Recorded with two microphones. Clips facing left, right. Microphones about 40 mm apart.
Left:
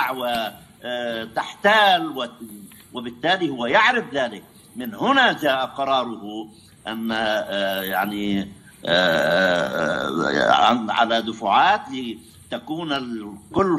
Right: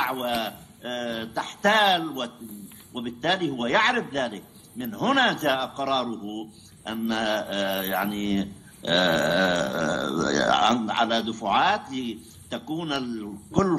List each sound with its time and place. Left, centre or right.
0.0 s a man's voice: centre
5.7 s a man's voice: centre
10.4 s a man's voice: centre